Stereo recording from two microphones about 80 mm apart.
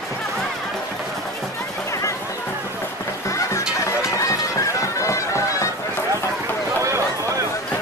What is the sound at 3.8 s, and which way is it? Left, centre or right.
Bagpipes, left.